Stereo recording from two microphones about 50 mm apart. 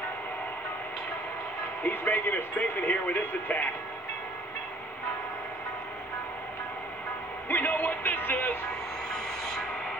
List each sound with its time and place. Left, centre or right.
1.8 s speech: left
7.4 s music: left